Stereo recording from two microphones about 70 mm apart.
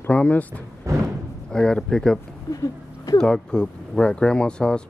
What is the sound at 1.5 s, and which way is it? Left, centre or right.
Speech, centre.